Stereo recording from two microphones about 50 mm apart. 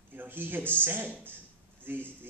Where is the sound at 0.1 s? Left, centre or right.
Right.